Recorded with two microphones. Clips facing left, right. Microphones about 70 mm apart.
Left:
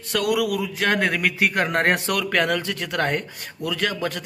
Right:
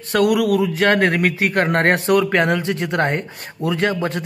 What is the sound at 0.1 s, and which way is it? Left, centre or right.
Speech, right.